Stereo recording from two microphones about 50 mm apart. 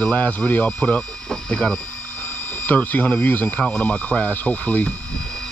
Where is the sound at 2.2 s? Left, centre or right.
Left.